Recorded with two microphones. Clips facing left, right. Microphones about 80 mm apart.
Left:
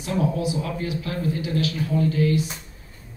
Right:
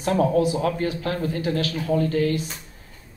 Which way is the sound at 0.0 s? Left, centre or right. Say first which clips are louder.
Right 5 dB; right.